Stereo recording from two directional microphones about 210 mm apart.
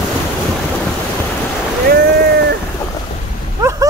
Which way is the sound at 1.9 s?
50° right (ahead or behind).